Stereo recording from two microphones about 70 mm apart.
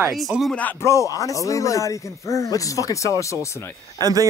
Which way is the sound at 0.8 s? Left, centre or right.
Left.